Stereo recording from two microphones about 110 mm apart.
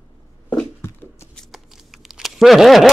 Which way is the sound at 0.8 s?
20° left (ahead or behind).